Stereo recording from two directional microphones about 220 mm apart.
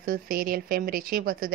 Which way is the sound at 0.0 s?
40° right (ahead or behind).